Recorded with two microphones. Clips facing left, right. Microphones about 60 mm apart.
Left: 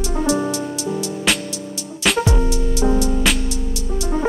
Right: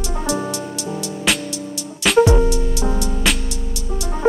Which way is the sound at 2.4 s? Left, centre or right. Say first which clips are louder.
Right 1 dB; centre.